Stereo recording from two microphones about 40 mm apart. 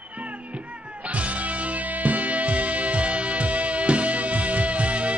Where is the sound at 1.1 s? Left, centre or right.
Right.